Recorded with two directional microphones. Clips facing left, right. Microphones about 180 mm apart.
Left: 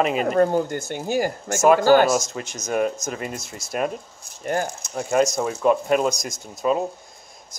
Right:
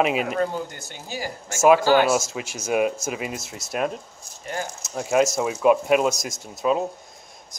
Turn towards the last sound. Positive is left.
turn(degrees=0)  # may be behind; listen again after turning